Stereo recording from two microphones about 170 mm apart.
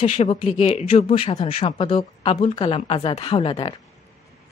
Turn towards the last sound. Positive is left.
turn(degrees=30)  # may be behind; listen again after turning